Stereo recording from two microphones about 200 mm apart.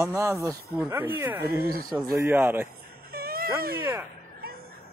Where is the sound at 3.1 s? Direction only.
50° right (ahead or behind).